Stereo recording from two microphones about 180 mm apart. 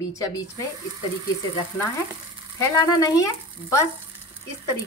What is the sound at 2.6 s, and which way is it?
A woman's voice, 20° left (ahead or behind).